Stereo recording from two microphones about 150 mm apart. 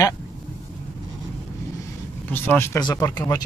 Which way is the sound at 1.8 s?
15° left (ahead or behind).